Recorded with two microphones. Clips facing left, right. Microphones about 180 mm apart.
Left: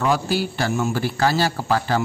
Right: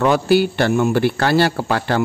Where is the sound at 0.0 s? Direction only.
65° right (ahead or behind).